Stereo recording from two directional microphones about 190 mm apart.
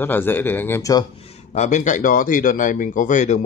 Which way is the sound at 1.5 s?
40° left (ahead or behind).